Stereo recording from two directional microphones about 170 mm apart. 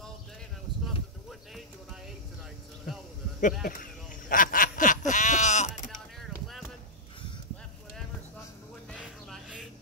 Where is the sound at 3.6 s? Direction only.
55° left (ahead or behind).